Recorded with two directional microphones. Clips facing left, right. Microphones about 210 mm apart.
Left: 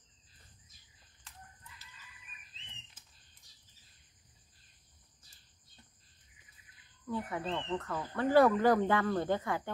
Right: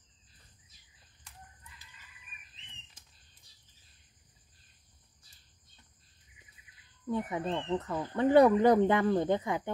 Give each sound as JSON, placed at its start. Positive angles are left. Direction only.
{"t": 7.1, "sound": "speech", "side_deg": -20}